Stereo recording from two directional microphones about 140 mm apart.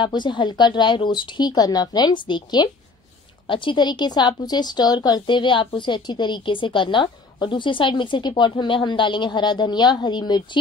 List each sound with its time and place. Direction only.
0.0 s speech: 35° left (ahead or behind)